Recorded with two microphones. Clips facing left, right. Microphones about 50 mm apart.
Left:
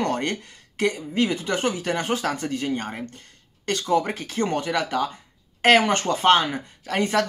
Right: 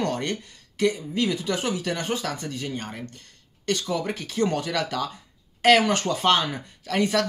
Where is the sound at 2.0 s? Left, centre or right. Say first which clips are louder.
Left 4 dB; left.